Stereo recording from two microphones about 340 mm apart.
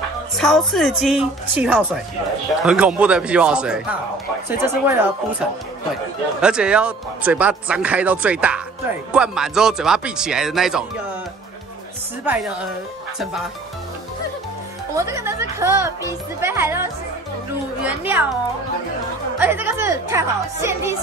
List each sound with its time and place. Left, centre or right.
0.4 s speech: centre
6.4 s speech: centre
15.0 s speech: centre